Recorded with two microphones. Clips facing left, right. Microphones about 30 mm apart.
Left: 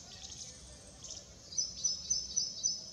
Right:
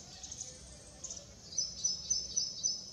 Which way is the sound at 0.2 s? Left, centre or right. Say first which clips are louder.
Right 1 dB; left.